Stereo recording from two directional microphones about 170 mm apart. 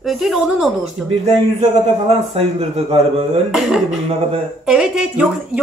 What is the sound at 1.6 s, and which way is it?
A man's voice, 35° right (ahead or behind).